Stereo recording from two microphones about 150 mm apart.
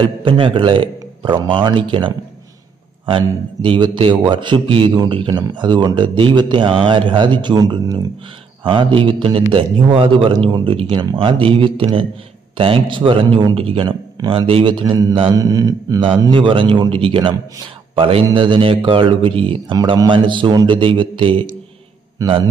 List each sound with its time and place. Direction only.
0.0 s a man's voice: 35° right (ahead or behind)